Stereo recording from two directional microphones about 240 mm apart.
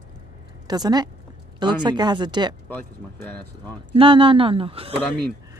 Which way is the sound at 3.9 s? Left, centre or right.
Right.